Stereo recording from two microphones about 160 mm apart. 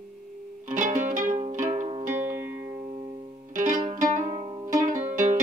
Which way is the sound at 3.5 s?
55° right (ahead or behind).